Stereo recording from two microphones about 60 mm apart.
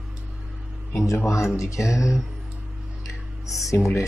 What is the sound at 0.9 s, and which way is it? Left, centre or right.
Speech, left.